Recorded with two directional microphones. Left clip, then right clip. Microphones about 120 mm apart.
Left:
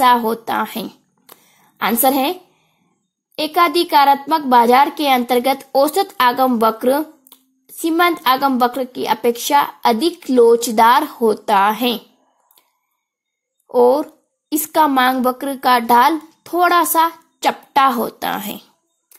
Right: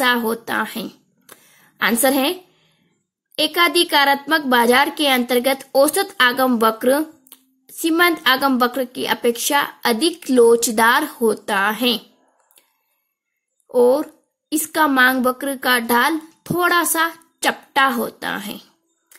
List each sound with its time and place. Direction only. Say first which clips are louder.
0.0 s speech: left 5 dB; 20° left (ahead or behind)
0.8 s a sound: left 1 dB; 20° left (ahead or behind)
3.3 s speech: left 1 dB; 20° left (ahead or behind)
10.3 s speech: left 2 dB; 5° left (ahead or behind)
10.7 s speech: left 4 dB; 20° left (ahead or behind)
13.7 s a woman's voice: left 2 dB; 20° left (ahead or behind)